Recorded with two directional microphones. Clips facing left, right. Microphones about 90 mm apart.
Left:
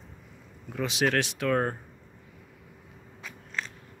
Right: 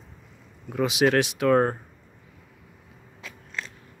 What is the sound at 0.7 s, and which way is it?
A man's voice, 15° right (ahead or behind).